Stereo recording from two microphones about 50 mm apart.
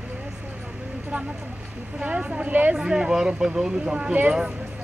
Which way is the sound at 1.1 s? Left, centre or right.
Right.